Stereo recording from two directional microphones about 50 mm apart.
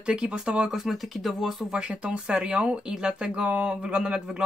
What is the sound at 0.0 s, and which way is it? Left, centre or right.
Speech, centre.